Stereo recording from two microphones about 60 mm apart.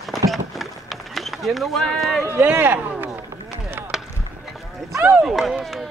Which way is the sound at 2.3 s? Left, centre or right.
Right.